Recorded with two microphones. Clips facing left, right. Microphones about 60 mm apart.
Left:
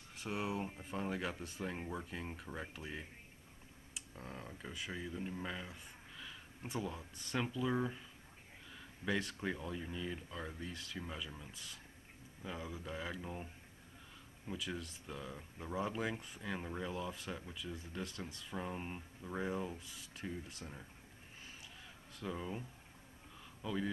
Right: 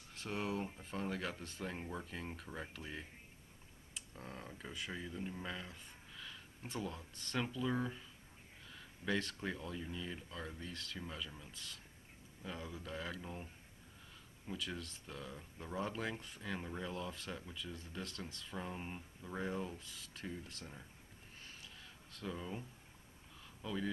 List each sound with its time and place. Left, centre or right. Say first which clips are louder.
0.1 s speech: left 1 dB; centre
14.5 s speech: left 1 dB; centre
22.1 s speech: left 2 dB; centre